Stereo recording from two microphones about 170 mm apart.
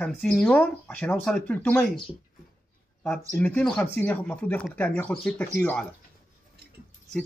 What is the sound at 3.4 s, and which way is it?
Speech, 5° left (ahead or behind).